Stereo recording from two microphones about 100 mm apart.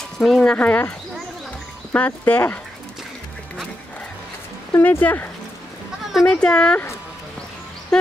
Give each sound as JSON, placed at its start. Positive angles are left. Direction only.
{"t": 0.2, "sound": "speech", "side_deg": 5}
{"t": 4.7, "sound": "speech", "side_deg": 20}
{"t": 7.9, "sound": "speech", "side_deg": 5}